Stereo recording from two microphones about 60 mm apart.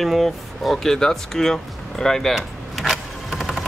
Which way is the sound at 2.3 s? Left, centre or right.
Centre.